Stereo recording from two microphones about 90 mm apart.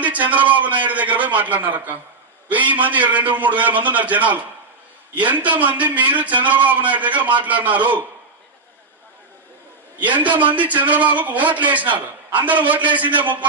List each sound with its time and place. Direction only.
0.0 s a man's voice: 20° right (ahead or behind)
5.6 s a man's voice: 20° right (ahead or behind)
10.0 s a man's voice: 20° right (ahead or behind)